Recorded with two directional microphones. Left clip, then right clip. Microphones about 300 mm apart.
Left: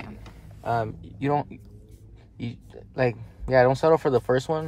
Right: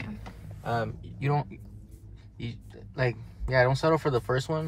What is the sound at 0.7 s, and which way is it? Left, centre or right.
Speech, left.